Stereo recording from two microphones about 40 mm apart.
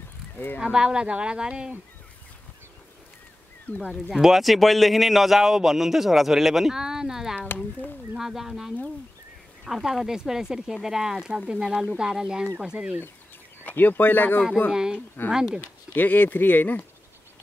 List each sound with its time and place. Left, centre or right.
0.6 s speech: centre
3.7 s speech: left
4.1 s a man's voice: centre; by 12.9 s right
13.7 s speech: left
14.7 s a man's voice: centre
15.9 s speech: left